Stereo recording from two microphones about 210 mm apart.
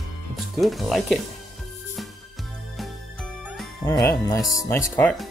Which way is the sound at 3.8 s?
15° left (ahead or behind).